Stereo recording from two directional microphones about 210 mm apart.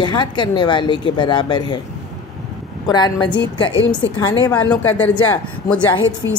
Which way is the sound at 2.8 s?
20° left (ahead or behind).